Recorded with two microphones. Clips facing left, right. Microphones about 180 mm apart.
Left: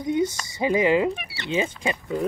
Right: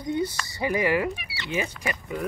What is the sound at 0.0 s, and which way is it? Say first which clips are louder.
Speech: left 4 dB; 20° left (ahead or behind).